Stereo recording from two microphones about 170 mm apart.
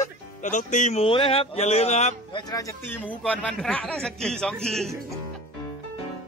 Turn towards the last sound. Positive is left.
turn(degrees=5)  # may be behind; listen again after turning